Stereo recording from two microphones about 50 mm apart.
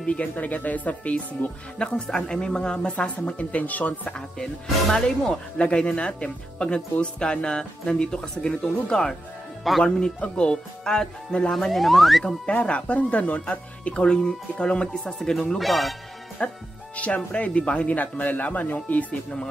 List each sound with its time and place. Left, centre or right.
0.0 s speech: left
4.8 s speech: centre
5.6 s speech: left
11.5 s speech: centre
12.4 s speech: left
15.1 s speech: centre
16.4 s speech: left